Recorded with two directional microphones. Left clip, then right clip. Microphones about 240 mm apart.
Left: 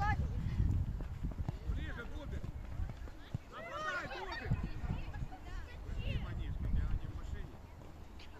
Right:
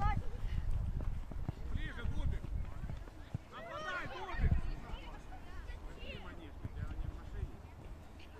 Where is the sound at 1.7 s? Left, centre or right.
Right.